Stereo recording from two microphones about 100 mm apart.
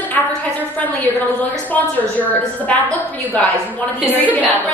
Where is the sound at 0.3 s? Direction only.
15° left (ahead or behind).